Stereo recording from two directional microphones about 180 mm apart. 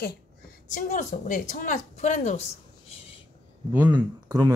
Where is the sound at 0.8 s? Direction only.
45° left (ahead or behind).